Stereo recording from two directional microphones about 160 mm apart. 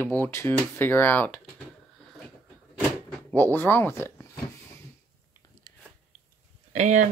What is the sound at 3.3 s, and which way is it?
Speech, 10° left (ahead or behind).